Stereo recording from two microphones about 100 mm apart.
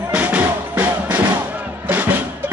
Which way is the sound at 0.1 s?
15° right (ahead or behind).